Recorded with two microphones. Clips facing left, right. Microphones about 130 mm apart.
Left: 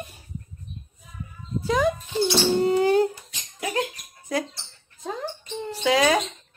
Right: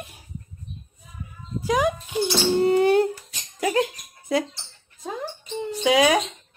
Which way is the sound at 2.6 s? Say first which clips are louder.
Right 3 dB; 60° right (ahead or behind).